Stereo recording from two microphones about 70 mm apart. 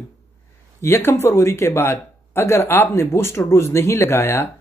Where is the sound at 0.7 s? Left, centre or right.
Left.